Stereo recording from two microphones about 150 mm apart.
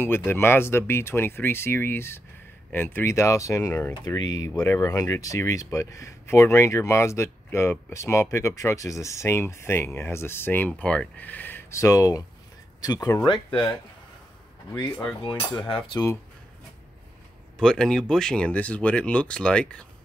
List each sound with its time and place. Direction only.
0.0 s speech: 15° left (ahead or behind)
13.3 s speech: 5° left (ahead or behind)
15.2 s cutlery: 35° left (ahead or behind)
15.7 s speech: 25° left (ahead or behind)
17.6 s speech: 5° left (ahead or behind)